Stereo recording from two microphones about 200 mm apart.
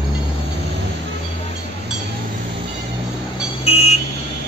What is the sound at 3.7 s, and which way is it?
Vehicle, 30° left (ahead or behind).